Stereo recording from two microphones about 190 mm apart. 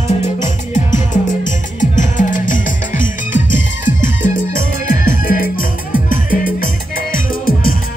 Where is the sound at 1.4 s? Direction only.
40° left (ahead or behind).